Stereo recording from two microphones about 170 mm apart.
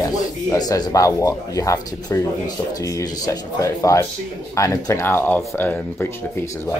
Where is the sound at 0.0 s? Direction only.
20° left (ahead or behind).